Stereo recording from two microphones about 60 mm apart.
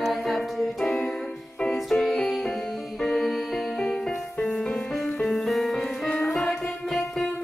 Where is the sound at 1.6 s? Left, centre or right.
Centre.